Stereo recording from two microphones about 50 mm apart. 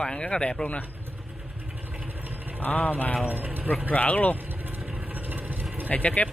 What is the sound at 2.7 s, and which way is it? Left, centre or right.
Speech, left.